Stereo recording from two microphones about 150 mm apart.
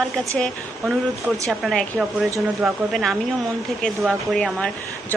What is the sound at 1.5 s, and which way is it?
A woman's voice, 5° left (ahead or behind).